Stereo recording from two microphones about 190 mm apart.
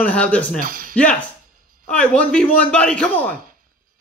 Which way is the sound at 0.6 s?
45° right (ahead or behind).